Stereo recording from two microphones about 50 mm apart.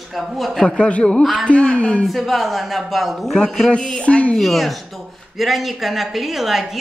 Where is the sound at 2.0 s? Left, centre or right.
Centre.